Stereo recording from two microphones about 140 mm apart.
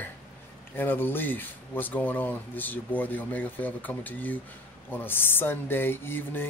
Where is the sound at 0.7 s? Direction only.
15° left (ahead or behind).